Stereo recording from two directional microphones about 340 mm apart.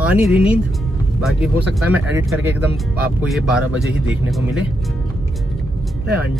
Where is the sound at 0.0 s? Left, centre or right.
Centre.